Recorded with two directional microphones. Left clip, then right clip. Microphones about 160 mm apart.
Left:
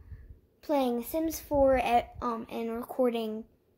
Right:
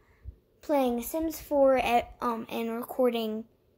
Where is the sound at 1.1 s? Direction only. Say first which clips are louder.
Even; centre (ahead or behind).